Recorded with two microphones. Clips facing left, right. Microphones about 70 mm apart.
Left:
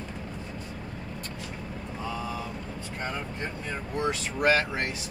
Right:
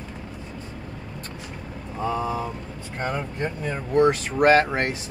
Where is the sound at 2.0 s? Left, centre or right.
Right.